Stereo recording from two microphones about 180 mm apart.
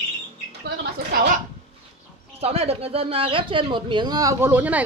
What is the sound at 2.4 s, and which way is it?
Speech, 35° right (ahead or behind).